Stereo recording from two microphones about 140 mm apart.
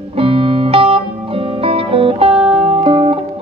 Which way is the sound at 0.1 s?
40° right (ahead or behind).